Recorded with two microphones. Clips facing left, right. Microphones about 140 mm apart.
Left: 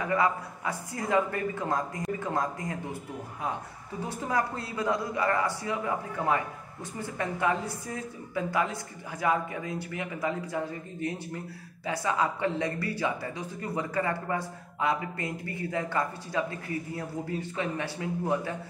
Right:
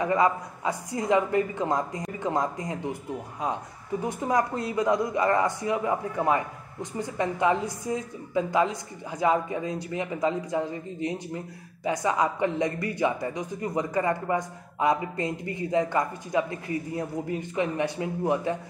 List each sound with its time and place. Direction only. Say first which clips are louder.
0.0 s a man's voice: right 4 dB; 20° right (ahead or behind)
4.0 s a man's voice: right 4 dB; 15° right (ahead or behind)